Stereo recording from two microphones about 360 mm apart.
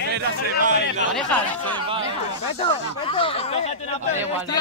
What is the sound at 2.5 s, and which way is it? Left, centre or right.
Speech, centre.